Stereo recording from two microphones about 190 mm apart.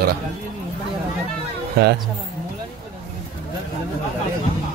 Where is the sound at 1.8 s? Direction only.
60° right (ahead or behind).